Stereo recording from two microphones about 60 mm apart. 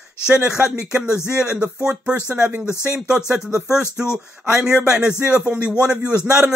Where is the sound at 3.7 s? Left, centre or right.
Centre.